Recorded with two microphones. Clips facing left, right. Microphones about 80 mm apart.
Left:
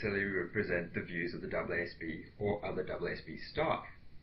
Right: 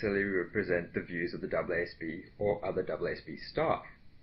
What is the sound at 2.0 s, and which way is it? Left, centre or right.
Speech, right.